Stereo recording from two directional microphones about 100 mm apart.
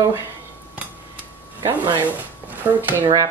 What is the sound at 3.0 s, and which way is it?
Speech, 40° right (ahead or behind).